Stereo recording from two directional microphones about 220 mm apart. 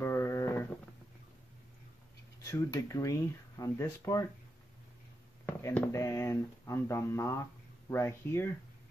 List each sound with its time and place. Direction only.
0.0 s a sound: 10° left (ahead or behind)
2.4 s speech: 15° left (ahead or behind)
5.5 s speech: 10° left (ahead or behind)